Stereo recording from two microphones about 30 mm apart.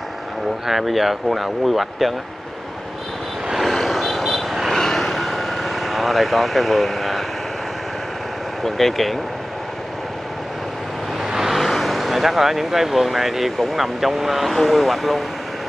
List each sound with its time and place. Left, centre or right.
0.7 s speech: centre
3.7 s vehicle: centre
4.7 s vehicle: centre
5.1 s vehicle: centre
8.6 s speech: centre
11.2 s vehicle: centre
11.5 s speech: centre